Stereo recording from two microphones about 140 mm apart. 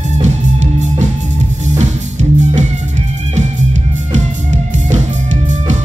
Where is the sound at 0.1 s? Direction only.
55° right (ahead or behind).